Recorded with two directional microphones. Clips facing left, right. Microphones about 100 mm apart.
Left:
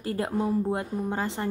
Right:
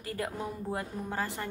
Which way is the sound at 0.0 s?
30° left (ahead or behind).